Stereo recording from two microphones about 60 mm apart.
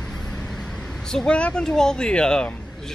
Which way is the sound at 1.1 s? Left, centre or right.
Centre.